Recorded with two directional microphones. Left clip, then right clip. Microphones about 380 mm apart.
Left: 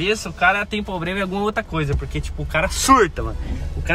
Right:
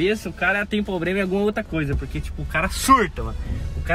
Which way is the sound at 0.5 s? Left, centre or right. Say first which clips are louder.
Left 2 dB; left.